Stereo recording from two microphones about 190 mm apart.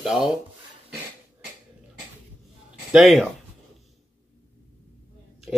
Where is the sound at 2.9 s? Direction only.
Centre (ahead or behind).